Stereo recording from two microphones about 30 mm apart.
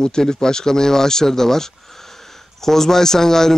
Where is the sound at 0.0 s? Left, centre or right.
Left.